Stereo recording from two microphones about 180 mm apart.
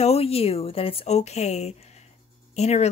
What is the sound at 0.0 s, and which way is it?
Speech, 35° left (ahead or behind).